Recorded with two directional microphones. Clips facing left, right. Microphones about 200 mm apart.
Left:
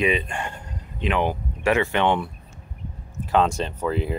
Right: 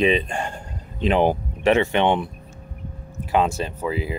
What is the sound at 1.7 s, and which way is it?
Speech, 20° right (ahead or behind).